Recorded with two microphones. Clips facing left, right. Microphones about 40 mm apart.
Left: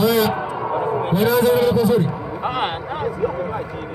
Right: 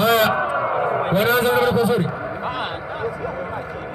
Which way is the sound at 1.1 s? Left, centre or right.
Right.